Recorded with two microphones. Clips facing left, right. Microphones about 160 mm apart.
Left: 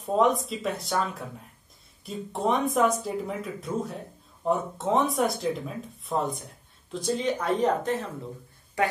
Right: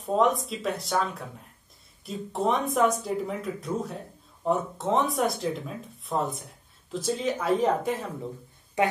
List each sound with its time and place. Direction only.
0.0 s speech: centre (ahead or behind)
8.8 s speech: 20° right (ahead or behind)